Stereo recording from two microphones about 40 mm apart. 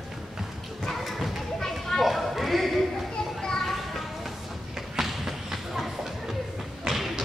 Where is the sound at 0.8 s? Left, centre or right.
Centre.